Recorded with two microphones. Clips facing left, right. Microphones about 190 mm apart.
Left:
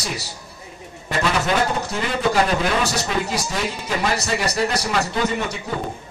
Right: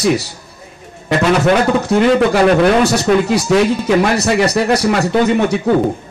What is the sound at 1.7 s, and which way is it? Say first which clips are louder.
Speech: right 13 dB; 65° right (ahead or behind).